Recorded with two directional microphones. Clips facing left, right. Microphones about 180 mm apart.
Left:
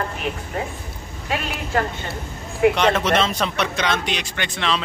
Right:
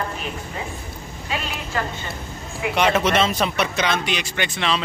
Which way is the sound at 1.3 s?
55° left (ahead or behind).